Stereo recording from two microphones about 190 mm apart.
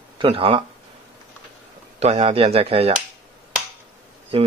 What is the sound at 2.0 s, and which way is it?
Speech, 35° right (ahead or behind).